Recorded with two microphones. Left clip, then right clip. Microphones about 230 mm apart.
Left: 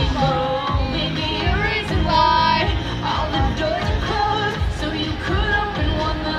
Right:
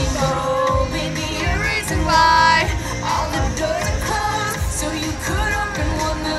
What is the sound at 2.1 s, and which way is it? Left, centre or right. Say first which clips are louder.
Music: right 3 dB; centre.